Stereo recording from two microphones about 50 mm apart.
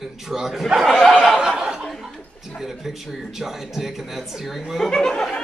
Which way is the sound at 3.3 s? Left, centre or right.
Centre.